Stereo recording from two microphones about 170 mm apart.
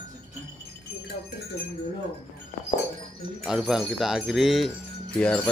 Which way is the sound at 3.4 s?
Centre (ahead or behind).